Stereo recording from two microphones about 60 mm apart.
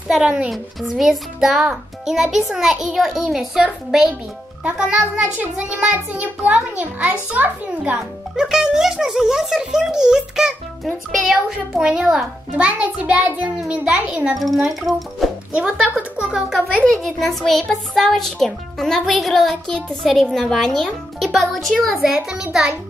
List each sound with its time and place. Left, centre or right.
0.8 s a child's voice: centre; by 8.0 s right
8.4 s a child's voice: centre
12.5 s a child's voice: right
14.4 s a child's voice: centre
15.5 s a child's voice: centre
16.8 s a child's voice: centre
19.7 s a child's voice: centre
22.0 s a child's voice: centre